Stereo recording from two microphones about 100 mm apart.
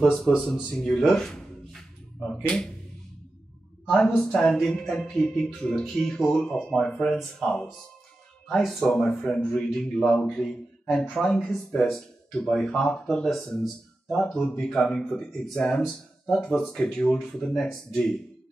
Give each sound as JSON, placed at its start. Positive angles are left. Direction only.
{"t": 0.0, "sound": "speech", "side_deg": 5}
{"t": 0.7, "sound": "a sound", "side_deg": 5}
{"t": 4.2, "sound": "a man's voice", "side_deg": 5}